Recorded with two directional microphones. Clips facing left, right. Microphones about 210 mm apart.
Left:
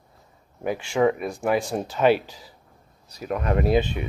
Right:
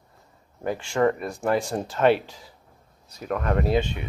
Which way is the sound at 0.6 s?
5° left (ahead or behind).